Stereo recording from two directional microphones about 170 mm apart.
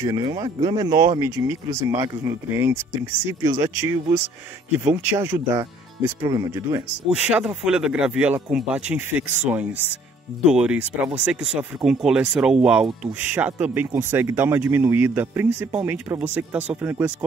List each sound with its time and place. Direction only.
0.0 s speech: 25° right (ahead or behind)
7.2 s speech: 5° right (ahead or behind)